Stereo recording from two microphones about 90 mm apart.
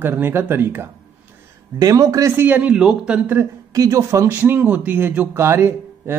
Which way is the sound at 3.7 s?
35° right (ahead or behind).